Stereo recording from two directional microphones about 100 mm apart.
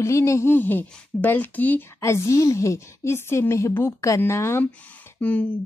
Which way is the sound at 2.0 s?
30° left (ahead or behind).